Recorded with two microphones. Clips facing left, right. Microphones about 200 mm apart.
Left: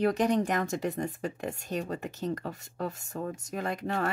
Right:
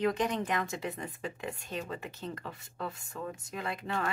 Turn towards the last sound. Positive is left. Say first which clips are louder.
# left 4 dB
turn(degrees=45)  # may be behind; listen again after turning